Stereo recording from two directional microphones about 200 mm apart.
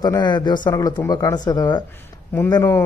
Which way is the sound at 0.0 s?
20° left (ahead or behind).